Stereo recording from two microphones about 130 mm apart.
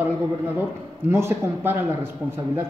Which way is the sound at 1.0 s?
20° right (ahead or behind).